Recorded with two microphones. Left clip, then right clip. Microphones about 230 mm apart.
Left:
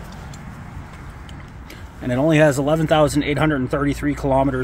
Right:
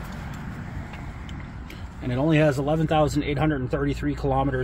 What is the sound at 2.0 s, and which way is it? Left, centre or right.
Speech, left.